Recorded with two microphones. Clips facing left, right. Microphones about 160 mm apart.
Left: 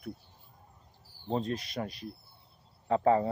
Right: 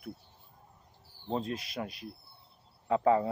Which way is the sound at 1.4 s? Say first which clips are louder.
Left 2 dB; centre (ahead or behind).